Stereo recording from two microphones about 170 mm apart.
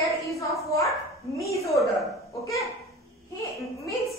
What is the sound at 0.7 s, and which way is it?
Speech, 20° left (ahead or behind).